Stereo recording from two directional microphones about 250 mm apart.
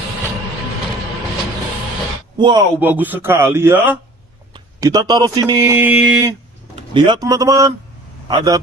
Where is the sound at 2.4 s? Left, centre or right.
Centre.